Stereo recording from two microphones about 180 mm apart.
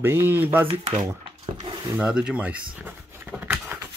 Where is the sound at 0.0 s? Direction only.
10° right (ahead or behind).